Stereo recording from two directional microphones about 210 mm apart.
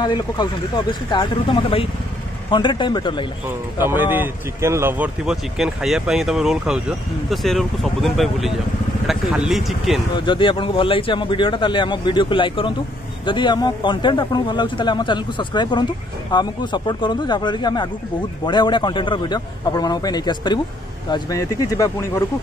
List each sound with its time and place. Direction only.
0.0 s speech: 20° left (ahead or behind)
3.4 s a man's voice: 10° right (ahead or behind)
10.1 s speech: 25° left (ahead or behind)